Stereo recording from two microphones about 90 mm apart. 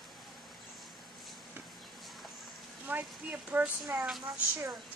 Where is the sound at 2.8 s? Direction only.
20° right (ahead or behind).